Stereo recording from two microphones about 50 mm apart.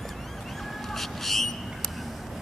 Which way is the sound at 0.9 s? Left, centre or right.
Centre.